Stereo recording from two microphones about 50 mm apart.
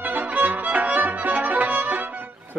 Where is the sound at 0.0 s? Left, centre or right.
Right.